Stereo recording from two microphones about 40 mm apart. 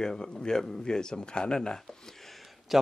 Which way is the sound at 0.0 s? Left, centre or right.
Centre.